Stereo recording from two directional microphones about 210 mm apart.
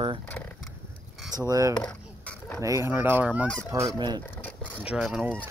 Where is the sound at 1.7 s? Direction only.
5° left (ahead or behind).